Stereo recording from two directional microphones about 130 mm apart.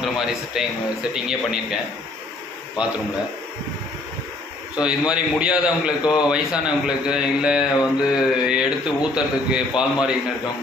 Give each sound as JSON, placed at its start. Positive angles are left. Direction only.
{"t": 0.0, "sound": "a man's voice", "side_deg": -5}
{"t": 4.7, "sound": "a man's voice", "side_deg": -10}